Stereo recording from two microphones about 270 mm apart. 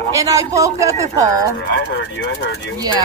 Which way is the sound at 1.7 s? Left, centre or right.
Left.